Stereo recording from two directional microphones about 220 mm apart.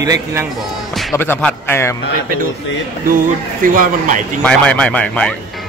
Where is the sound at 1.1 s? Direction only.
10° left (ahead or behind).